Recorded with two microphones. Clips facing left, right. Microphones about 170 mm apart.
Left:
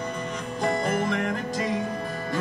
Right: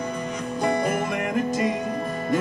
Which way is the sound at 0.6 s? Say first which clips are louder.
Right 1 dB; 15° right (ahead or behind).